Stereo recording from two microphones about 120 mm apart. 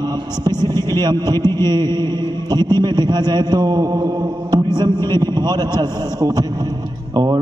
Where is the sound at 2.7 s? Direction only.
35° right (ahead or behind).